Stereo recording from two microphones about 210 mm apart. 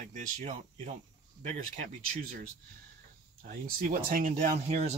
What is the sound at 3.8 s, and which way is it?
Speech, 45° right (ahead or behind).